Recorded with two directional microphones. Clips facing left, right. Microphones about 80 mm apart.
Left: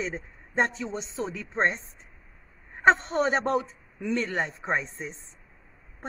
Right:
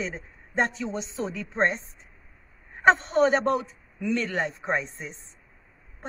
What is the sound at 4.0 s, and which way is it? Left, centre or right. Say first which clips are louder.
Speech: right 1 dB; left.